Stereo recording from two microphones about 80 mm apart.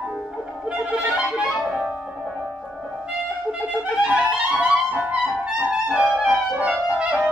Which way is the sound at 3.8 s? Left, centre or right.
Centre.